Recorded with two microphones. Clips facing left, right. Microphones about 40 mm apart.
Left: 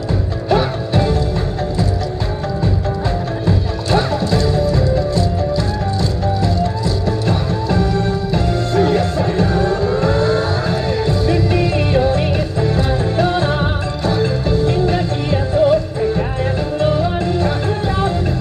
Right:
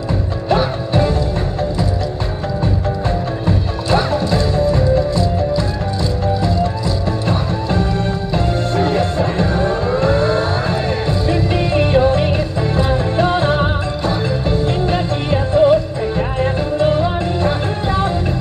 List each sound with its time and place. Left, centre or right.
0.5 s music: right
3.4 s music: right
16.0 s music: right
16.8 s music: right